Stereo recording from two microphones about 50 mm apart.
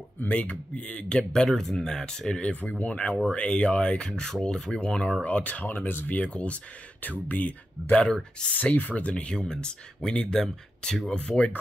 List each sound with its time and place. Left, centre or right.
0.3 s speech: left
2.6 s speech: left
5.2 s speech: left
6.1 s speech: left
7.9 s speech: centre